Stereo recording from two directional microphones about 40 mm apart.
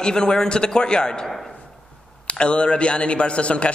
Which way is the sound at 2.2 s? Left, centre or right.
Left.